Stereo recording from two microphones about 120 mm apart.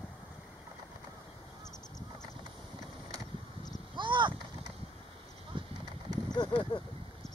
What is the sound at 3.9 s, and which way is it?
Vehicle, 40° right (ahead or behind).